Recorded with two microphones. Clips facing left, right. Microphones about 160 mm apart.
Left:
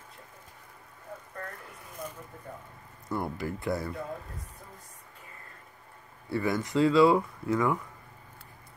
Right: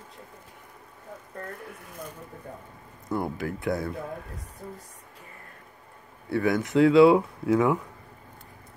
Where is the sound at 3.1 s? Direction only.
Centre (ahead or behind).